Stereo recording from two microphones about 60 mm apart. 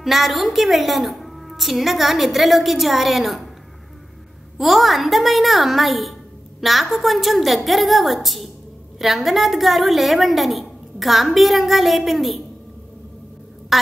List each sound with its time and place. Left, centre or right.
0.0 s a woman's voice: centre
4.6 s a woman's voice: centre